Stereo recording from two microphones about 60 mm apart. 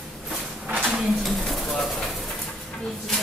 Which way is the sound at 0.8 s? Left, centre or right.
Centre.